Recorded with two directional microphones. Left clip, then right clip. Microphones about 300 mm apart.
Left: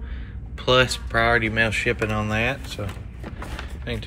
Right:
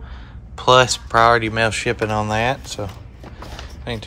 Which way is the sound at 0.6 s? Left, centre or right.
Centre.